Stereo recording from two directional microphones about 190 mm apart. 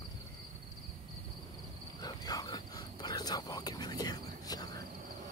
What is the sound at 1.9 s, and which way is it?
Cricket, 20° left (ahead or behind).